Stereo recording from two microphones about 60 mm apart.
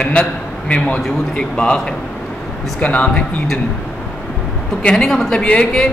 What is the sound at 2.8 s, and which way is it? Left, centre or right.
Speech, left.